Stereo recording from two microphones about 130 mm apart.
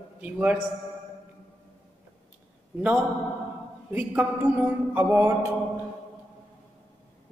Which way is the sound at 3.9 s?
10° right (ahead or behind).